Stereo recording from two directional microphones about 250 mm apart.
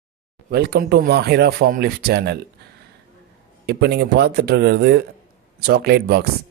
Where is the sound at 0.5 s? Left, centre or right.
Right.